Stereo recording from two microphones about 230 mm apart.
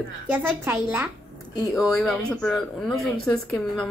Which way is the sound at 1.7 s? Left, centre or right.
Centre.